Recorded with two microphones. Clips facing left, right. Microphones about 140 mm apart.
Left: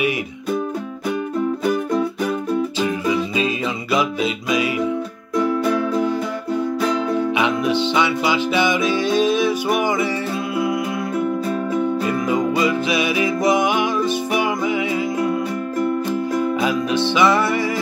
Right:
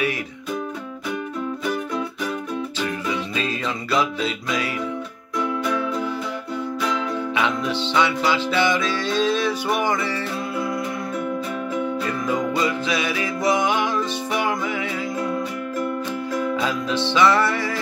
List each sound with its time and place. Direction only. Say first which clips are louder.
3.3 s music: left 4 dB; 15° left (ahead or behind)
5.3 s music: left 5 dB; 40° left (ahead or behind)
7.3 s music: left 4 dB; 15° left (ahead or behind)
12.1 s music: left 4 dB; 15° left (ahead or behind)
16.6 s music: left 4 dB; 15° left (ahead or behind)